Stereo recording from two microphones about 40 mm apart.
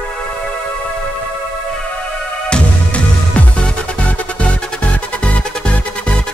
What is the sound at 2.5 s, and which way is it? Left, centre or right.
Music, left.